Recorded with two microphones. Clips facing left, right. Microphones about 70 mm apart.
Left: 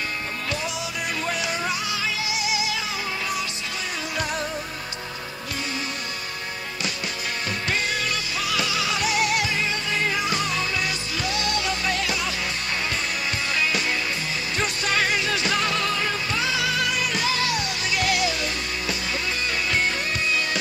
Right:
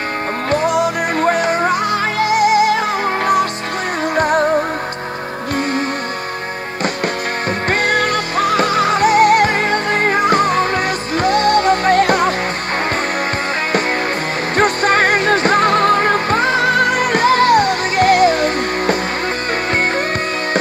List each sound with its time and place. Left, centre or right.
0.5 s music: right
4.1 s music: right
7.6 s music: right
14.6 s music: right